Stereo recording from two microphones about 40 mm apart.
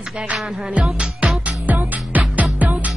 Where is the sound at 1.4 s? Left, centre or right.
Right.